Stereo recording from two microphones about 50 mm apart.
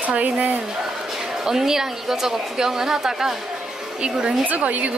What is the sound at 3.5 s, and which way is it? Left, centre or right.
Music, centre.